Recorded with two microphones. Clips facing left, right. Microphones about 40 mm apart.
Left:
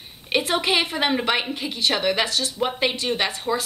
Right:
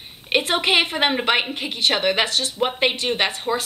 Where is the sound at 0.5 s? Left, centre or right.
Right.